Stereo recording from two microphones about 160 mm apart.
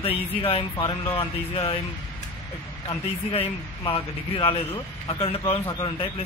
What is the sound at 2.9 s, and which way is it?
Speech, 30° left (ahead or behind).